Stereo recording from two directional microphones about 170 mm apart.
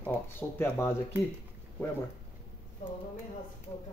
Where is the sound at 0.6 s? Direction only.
15° left (ahead or behind).